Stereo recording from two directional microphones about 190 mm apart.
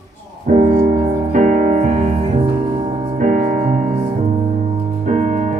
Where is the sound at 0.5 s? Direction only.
35° right (ahead or behind).